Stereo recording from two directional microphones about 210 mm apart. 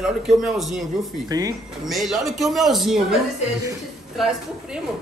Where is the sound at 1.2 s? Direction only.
15° right (ahead or behind).